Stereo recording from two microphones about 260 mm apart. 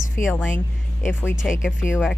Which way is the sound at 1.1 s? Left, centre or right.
Centre.